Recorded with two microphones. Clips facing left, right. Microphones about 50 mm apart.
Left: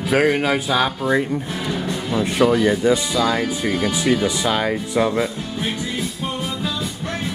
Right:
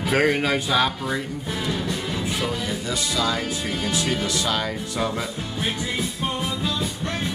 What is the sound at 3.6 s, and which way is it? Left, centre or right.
Speech, left.